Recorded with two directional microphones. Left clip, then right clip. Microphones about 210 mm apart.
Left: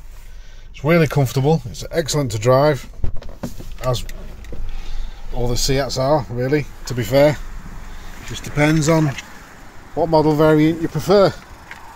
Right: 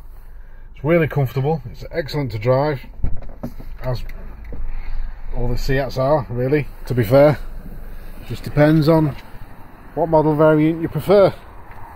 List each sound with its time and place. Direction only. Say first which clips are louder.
0.7 s speech: left 1 dB; 10° left (ahead or behind)
5.3 s speech: left 3 dB; 15° left (ahead or behind); by 6.7 s 10° right (ahead or behind)
6.8 s speech: right 2 dB; 20° right (ahead or behind)
8.5 s speech: right 2 dB; 15° right (ahead or behind)
9.9 s speech: even; 5° left (ahead or behind)